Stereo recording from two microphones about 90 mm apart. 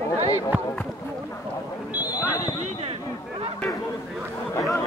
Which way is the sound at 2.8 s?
90° right.